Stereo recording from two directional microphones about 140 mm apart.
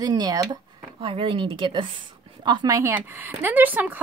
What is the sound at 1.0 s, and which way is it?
A woman's voice, 40° right (ahead or behind).